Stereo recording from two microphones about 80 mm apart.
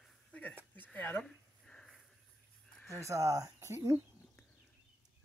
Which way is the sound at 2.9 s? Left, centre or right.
Right.